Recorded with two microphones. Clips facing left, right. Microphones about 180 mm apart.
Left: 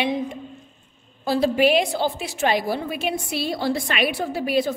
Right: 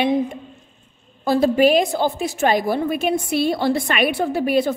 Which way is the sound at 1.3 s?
45° right (ahead or behind).